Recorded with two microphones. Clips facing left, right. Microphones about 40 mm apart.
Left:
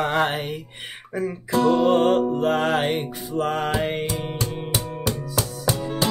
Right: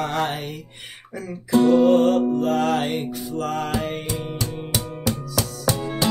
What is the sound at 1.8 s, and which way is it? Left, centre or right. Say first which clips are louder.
Speech: right 1 dB; left.